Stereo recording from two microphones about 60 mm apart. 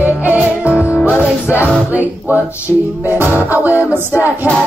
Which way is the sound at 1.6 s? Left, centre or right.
Right.